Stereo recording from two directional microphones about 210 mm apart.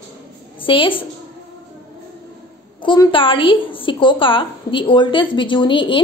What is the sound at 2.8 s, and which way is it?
A woman's voice, 25° left (ahead or behind).